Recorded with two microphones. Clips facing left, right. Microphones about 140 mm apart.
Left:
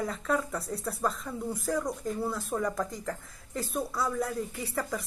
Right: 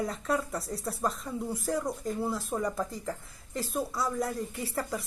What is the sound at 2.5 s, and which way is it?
Speech, 10° right (ahead or behind).